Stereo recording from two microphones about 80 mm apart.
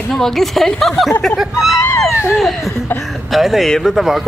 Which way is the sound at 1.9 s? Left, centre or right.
Left.